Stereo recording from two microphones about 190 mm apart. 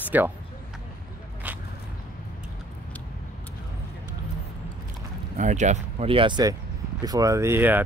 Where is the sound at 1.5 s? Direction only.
10° right (ahead or behind).